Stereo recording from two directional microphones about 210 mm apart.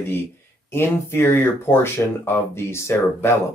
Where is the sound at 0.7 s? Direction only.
10° left (ahead or behind).